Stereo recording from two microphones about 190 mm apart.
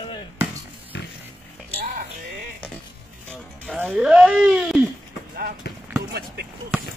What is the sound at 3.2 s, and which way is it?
Music, 5° left (ahead or behind).